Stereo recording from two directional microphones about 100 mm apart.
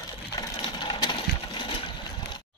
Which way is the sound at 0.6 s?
45° left (ahead or behind).